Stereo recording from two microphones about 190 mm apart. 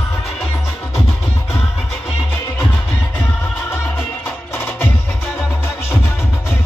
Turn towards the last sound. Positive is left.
turn(degrees=10)  # may be behind; listen again after turning